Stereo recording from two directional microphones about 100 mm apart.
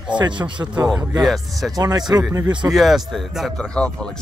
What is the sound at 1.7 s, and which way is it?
Speech, 40° right (ahead or behind).